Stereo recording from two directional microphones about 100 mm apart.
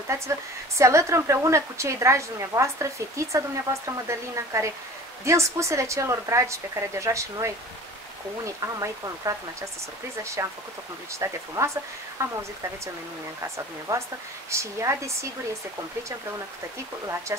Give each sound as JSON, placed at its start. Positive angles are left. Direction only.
{"t": 0.7, "sound": "a woman's voice", "side_deg": -30}
{"t": 8.7, "sound": "a woman's voice", "side_deg": -35}
{"t": 10.4, "sound": "a woman's voice", "side_deg": -30}
{"t": 13.9, "sound": "a woman's voice", "side_deg": -30}
{"t": 17.3, "sound": "a woman's voice", "side_deg": -30}